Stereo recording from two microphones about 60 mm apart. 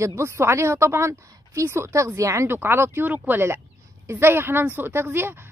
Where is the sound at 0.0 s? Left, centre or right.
Right.